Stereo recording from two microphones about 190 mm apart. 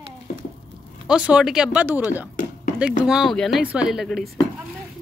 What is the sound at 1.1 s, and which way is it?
Speech, 5° right (ahead or behind).